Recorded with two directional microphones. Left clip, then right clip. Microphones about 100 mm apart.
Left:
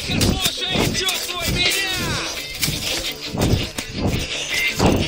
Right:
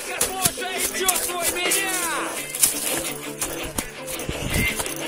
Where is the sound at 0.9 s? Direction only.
60° right (ahead or behind).